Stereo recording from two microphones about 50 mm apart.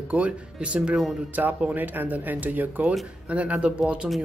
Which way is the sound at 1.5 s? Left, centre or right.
Right.